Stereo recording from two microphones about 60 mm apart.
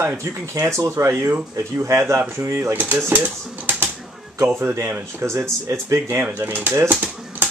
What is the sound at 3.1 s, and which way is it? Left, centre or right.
Speech, right.